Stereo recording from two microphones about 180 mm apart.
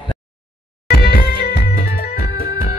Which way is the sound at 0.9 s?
55° left (ahead or behind).